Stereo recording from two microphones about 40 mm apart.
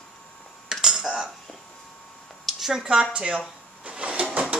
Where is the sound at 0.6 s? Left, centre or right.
Centre.